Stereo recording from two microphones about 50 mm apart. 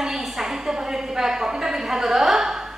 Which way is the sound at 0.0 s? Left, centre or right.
Centre.